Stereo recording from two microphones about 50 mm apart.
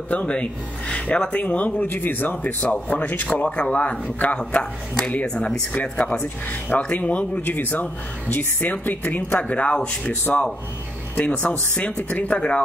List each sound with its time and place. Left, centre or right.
0.1 s speech: left
1.9 s speech: left
3.4 s speech: left
5.7 s speech: left
9.4 s speech: left